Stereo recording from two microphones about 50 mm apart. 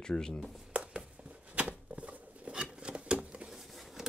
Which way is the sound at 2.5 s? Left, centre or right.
Centre.